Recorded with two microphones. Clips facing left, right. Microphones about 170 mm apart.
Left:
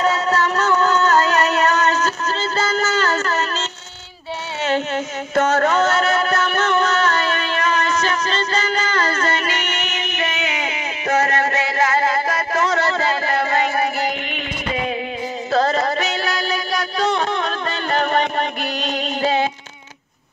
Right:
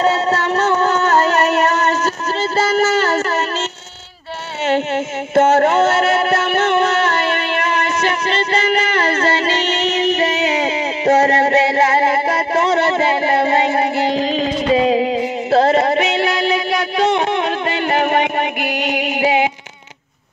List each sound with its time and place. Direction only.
0.0 s music: 30° right (ahead or behind)
4.6 s a sound: 25° right (ahead or behind)
15.5 s music: 30° right (ahead or behind)